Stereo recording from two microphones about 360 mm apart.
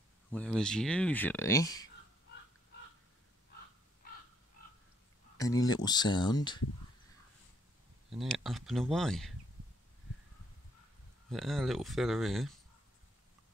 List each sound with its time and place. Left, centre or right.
0.3 s speech: centre
4.0 s crow: left
5.4 s speech: centre
8.1 s speech: centre
11.2 s speech: centre